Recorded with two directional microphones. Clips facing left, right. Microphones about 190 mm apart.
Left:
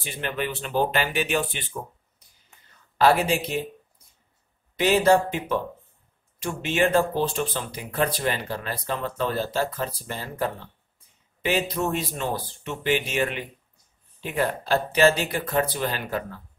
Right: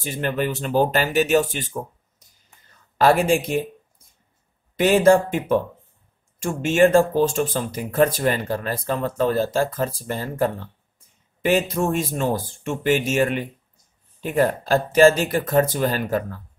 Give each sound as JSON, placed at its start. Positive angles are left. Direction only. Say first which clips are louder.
{"t": 0.0, "sound": "speech", "louder": "right 5 dB", "side_deg": -45}
{"t": 4.7, "sound": "speech", "louder": "right 4 dB", "side_deg": -50}